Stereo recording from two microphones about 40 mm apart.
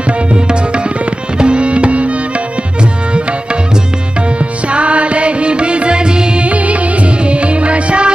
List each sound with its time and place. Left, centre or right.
0.3 s tabla: right
1.4 s music: right
4.6 s music: right
6.4 s music: right